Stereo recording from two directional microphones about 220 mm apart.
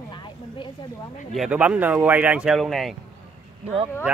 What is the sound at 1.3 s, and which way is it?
Speech, 5° right (ahead or behind).